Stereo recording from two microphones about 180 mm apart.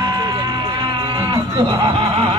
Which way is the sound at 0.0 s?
20° right (ahead or behind).